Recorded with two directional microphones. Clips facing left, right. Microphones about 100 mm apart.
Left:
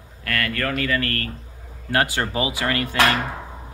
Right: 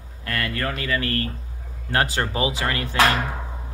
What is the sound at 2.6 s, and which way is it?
Speech, 5° right (ahead or behind).